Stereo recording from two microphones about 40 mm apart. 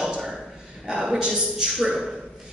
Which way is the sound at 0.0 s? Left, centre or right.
Centre.